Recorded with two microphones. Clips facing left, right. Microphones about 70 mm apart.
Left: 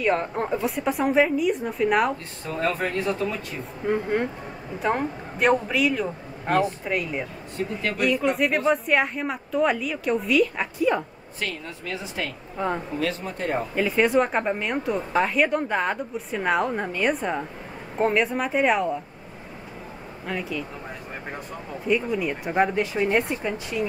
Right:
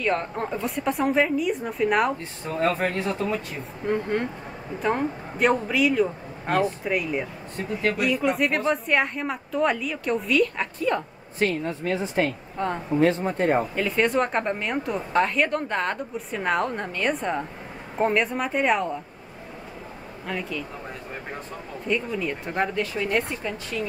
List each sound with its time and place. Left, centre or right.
0.0 s a woman's voice: centre
2.4 s speech: right
3.8 s a woman's voice: centre
11.3 s speech: right
12.5 s speech: centre
13.0 s speech: right
13.7 s a woman's voice: centre
20.2 s a woman's voice: centre
21.8 s speech: centre